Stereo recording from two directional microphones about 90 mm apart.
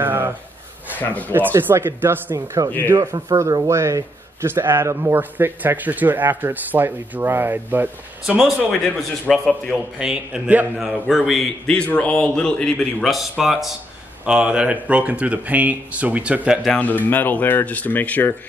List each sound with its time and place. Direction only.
0.0 s a sound: 25° right (ahead or behind)
0.9 s speech: 20° left (ahead or behind)
1.3 s a man's voice: 20° right (ahead or behind)
2.3 s a man's voice: 40° right (ahead or behind); by 8.4 s 20° right (ahead or behind)
9.3 s a man's voice: 5° left (ahead or behind)
9.9 s speech: 10° right (ahead or behind)
10.8 s speech: centre (ahead or behind)
16.7 s speech: 20° left (ahead or behind)